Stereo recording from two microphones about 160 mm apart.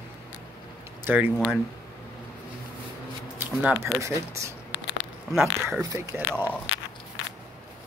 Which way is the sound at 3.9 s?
20° right (ahead or behind).